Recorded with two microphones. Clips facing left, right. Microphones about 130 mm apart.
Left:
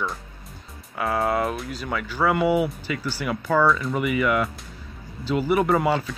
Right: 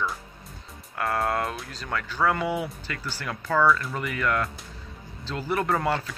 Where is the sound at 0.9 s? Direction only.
5° left (ahead or behind).